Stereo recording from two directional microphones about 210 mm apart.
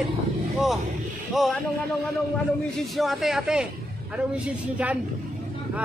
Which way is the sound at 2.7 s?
Centre (ahead or behind).